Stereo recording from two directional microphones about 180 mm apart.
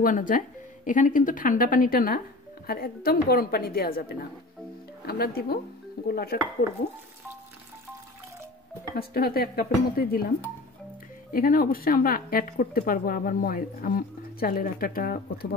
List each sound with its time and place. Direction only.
0.0 s a woman's voice: 45° left (ahead or behind)
5.0 s speech: 60° left (ahead or behind)
8.9 s speech: 55° left (ahead or behind)
11.3 s a woman's voice: 50° left (ahead or behind)